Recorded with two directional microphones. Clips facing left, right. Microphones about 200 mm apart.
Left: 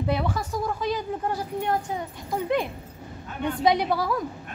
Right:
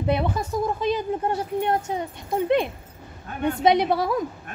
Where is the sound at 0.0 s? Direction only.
20° right (ahead or behind).